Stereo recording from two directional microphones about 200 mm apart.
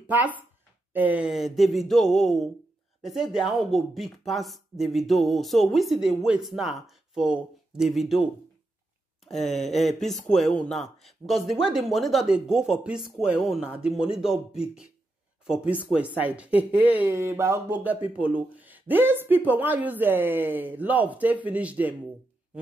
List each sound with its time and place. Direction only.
0.0 s speech: 10° right (ahead or behind)